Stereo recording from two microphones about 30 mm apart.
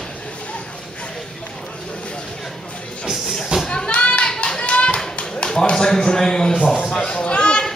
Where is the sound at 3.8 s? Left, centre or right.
Left.